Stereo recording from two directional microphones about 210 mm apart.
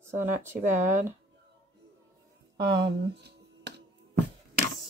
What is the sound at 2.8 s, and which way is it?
Finger snapping, 55° right (ahead or behind).